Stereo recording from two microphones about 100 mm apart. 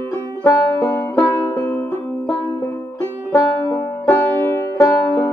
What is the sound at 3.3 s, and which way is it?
Banjo, 30° left (ahead or behind).